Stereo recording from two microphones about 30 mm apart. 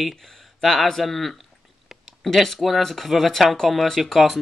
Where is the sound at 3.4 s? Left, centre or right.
Centre.